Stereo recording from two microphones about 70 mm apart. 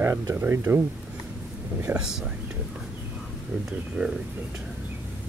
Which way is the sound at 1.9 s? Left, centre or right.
Right.